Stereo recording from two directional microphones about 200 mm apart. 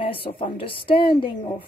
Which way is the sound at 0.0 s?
25° left (ahead or behind).